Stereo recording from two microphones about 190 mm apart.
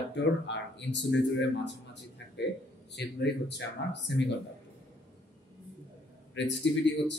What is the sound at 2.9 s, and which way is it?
Speech, 65° left (ahead or behind).